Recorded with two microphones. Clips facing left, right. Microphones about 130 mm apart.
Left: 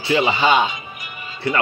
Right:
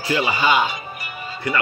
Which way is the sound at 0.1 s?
25° left (ahead or behind).